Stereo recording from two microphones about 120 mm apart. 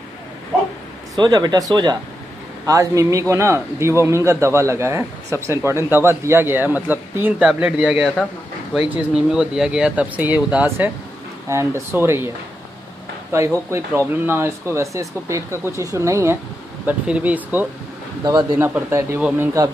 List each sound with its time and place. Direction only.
1.2 s a man's voice: 35° right (ahead or behind); by 10.9 s 15° right (ahead or behind)
11.4 s a man's voice: 25° right (ahead or behind)
13.3 s a man's voice: 20° right (ahead or behind)